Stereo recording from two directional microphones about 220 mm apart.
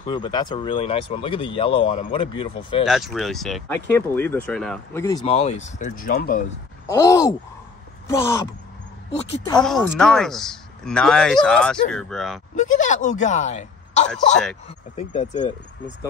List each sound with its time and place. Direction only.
0.0 s speech: 20° left (ahead or behind)
2.8 s speech: centre (ahead or behind)
5.0 s speech: 20° left (ahead or behind); by 6.4 s 40° left (ahead or behind)
6.9 s speech: 15° left (ahead or behind)
9.6 s speech: centre (ahead or behind)
12.5 s speech: 35° left (ahead or behind)